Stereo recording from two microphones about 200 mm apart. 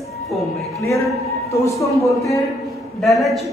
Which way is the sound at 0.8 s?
15° left (ahead or behind).